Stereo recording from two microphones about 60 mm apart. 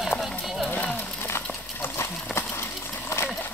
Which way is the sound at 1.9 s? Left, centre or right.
Left.